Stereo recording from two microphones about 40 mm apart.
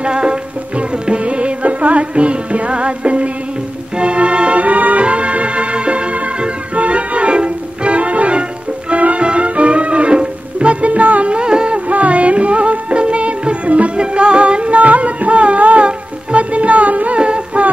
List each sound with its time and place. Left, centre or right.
0.0 s music: right
5.0 s music: right
11.3 s a sound: right
11.9 s music: right